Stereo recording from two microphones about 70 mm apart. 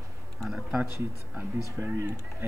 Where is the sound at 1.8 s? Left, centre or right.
Right.